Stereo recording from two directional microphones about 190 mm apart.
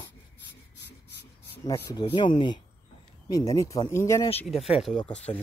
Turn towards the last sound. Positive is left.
turn(degrees=5)  # may be behind; listen again after turning